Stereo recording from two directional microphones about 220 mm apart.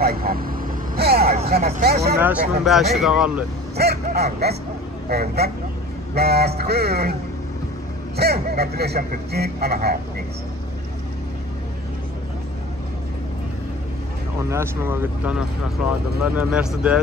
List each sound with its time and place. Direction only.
0.0 s vehicle: 40° right (ahead or behind)
0.9 s a sound: 45° right (ahead or behind)
1.5 s speech: 40° right (ahead or behind)
2.1 s speech: 5° right (ahead or behind)
3.7 s speech: 45° right (ahead or behind)
8.2 s speech: 45° right (ahead or behind)
14.5 s speech: 10° right (ahead or behind)